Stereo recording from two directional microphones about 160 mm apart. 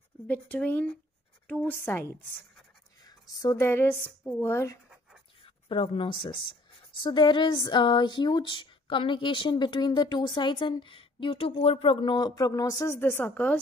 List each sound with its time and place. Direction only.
0.3 s a woman's voice: 10° left (ahead or behind)
3.0 s a woman's voice: 25° left (ahead or behind)
5.4 s speech: 35° left (ahead or behind); by 13.6 s 10° left (ahead or behind)